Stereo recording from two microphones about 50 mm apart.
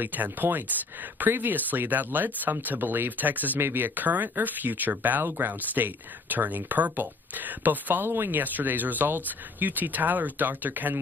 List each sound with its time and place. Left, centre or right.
0.0 s speech: right